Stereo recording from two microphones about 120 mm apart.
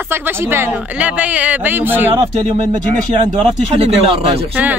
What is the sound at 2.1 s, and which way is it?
Speech, 45° right (ahead or behind).